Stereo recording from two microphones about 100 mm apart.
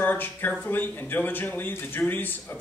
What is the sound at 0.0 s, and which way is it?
A man's voice, 15° left (ahead or behind).